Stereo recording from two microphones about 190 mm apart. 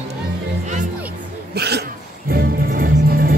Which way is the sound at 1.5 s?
60° right (ahead or behind).